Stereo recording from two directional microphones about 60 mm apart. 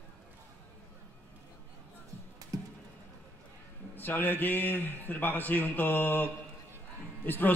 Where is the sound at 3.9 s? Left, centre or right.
Left.